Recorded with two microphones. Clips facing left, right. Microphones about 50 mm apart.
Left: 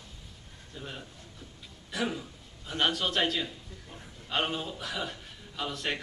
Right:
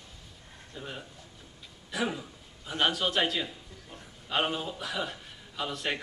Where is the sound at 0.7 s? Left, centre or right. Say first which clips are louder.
Right 1 dB; centre.